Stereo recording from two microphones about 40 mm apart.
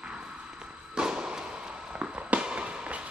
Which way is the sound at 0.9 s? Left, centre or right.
Centre.